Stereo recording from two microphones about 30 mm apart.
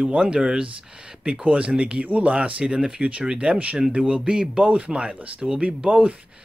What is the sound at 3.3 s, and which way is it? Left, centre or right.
Speech, right.